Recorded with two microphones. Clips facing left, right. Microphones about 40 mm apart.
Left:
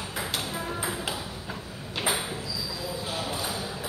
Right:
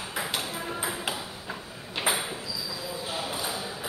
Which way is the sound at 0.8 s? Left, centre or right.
Centre.